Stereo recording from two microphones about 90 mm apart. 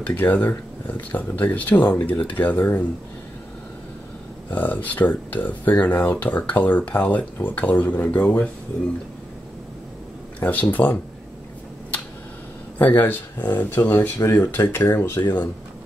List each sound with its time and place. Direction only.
0.0 s speech: 20° left (ahead or behind)
4.5 s speech: 20° left (ahead or behind)
10.4 s speech: 20° left (ahead or behind)
12.7 s speech: 20° left (ahead or behind)